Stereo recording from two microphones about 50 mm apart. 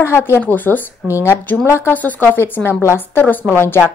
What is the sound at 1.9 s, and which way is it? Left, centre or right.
Speech, left.